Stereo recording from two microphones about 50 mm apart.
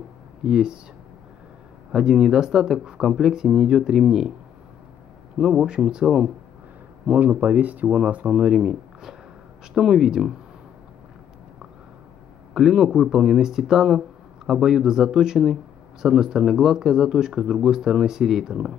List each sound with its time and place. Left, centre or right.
0.4 s speech: centre
1.9 s speech: centre
5.4 s speech: centre
7.1 s speech: right
8.5 s speech: centre
12.5 s speech: centre